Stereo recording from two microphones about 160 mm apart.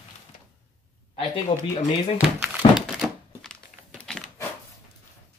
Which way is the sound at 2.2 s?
5° right (ahead or behind).